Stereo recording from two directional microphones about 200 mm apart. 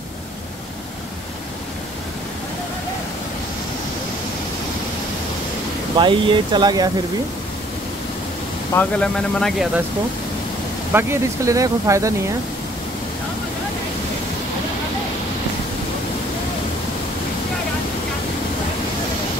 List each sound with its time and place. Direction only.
5.9 s speech: 25° right (ahead or behind)
8.7 s speech: 5° left (ahead or behind)
10.9 s speech: 10° right (ahead or behind)